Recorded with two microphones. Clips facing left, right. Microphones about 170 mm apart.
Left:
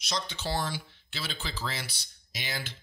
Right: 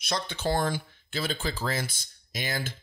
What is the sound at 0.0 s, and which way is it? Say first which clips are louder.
A man's voice: right 4 dB; 55° right (ahead or behind).